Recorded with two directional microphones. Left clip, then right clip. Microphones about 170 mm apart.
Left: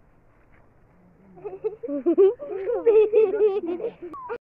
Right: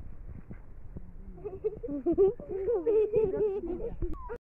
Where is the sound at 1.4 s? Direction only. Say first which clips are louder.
Left 4 dB; 55° left (ahead or behind).